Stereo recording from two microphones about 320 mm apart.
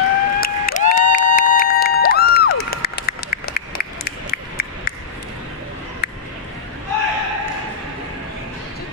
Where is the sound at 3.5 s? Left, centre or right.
Left.